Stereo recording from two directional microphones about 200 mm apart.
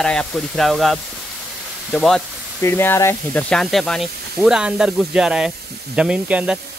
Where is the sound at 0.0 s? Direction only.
5° left (ahead or behind).